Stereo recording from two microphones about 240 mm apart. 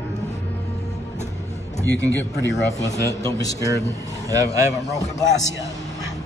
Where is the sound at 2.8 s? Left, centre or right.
Centre.